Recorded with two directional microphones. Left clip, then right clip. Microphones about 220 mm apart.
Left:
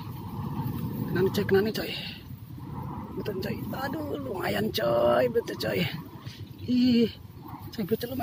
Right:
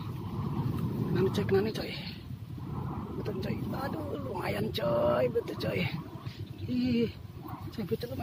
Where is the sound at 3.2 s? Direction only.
35° left (ahead or behind).